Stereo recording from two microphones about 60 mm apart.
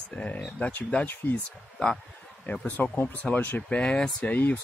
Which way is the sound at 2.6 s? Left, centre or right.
Left.